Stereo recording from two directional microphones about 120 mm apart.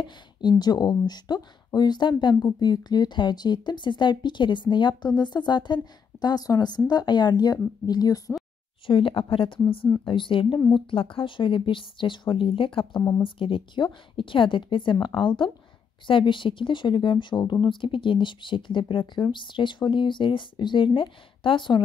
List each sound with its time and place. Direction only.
0.0 s speech: 35° left (ahead or behind)
8.8 s speech: 45° left (ahead or behind)